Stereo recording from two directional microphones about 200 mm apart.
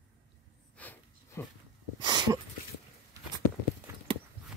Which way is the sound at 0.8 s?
10° left (ahead or behind).